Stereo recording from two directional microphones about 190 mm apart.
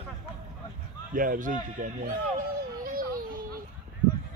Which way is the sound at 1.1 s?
45° right (ahead or behind).